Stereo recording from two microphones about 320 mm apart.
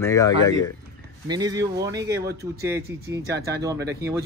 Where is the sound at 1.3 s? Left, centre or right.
Centre.